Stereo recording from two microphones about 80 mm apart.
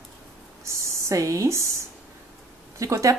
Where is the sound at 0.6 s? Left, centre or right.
Right.